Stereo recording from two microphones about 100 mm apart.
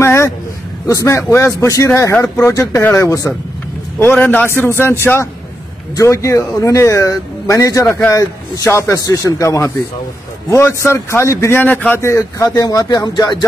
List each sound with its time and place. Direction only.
0.0 s a sound: 25° left (ahead or behind)
0.8 s speech: 30° left (ahead or behind)
2.1 s speech: 15° left (ahead or behind)
2.4 s a man's voice: 30° left (ahead or behind)
12.4 s speech: 40° left (ahead or behind)